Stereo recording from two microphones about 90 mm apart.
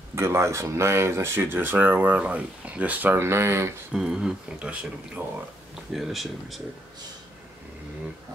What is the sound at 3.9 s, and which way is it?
Speech, 5° right (ahead or behind).